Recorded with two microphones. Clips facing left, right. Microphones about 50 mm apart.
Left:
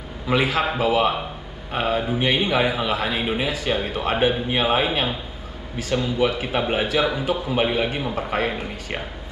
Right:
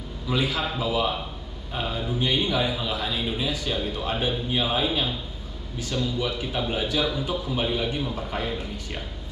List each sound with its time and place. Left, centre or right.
0.3 s a man's voice: left